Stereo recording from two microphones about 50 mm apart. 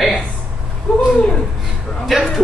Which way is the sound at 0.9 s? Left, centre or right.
Left.